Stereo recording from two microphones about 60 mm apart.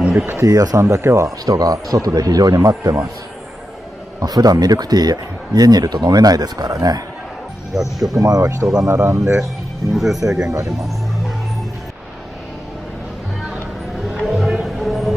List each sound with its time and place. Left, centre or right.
0.4 s speech: right
1.0 s speech: right
1.4 s speech: right
2.8 s speech: right
4.2 s speech: right
8.0 s speech: right
8.5 s speech: right
9.9 s speech: centre
14.1 s music: centre